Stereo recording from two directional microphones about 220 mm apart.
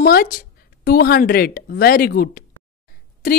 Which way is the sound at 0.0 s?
40° left (ahead or behind).